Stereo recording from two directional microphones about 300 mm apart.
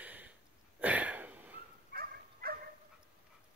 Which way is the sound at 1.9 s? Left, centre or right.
Right.